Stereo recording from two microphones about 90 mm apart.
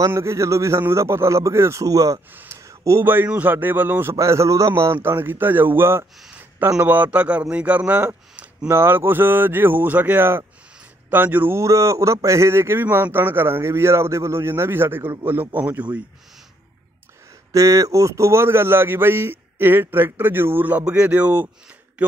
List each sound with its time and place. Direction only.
0.1 s speech: 35° right (ahead or behind)
2.3 s a sound: 30° right (ahead or behind)
3.3 s a man's voice: 20° right (ahead or behind)
11.6 s a man's voice: 35° right (ahead or behind)
17.5 s a man's voice: 40° right (ahead or behind); by 21.5 s 20° right (ahead or behind)